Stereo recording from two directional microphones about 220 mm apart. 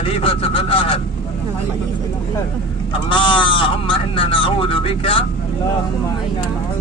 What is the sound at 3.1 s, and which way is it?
Speech, 25° left (ahead or behind).